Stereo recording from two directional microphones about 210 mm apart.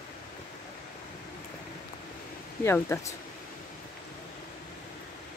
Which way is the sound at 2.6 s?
10° left (ahead or behind).